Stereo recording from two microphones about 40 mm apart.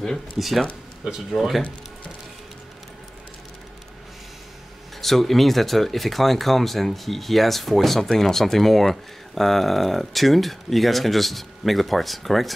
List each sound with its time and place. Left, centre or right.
0.4 s speech: centre
5.0 s speech: centre